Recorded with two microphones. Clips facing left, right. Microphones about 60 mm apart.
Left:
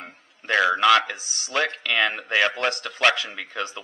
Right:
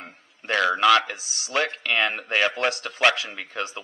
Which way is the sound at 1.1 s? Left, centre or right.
Left.